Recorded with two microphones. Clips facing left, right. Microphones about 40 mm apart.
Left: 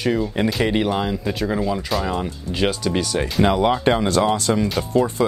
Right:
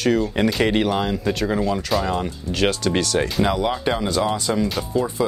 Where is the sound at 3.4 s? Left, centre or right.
Centre.